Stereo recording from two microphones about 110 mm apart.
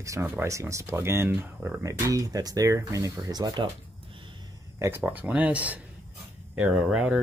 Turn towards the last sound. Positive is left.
turn(degrees=-10)  # may be behind; listen again after turning